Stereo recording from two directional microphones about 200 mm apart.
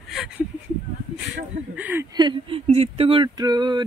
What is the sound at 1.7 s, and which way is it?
Speech, 10° right (ahead or behind).